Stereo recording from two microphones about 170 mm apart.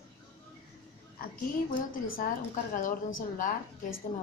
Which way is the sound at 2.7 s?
50° left (ahead or behind).